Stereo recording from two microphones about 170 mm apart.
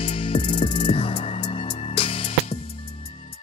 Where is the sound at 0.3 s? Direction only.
35° left (ahead or behind).